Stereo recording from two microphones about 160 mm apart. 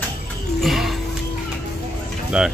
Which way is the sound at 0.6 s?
Centre (ahead or behind).